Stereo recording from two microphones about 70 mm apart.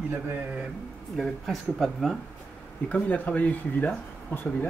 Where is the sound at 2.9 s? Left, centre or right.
Left.